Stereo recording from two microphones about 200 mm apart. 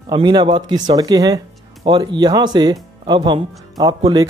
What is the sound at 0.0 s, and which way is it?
Speech, 20° right (ahead or behind).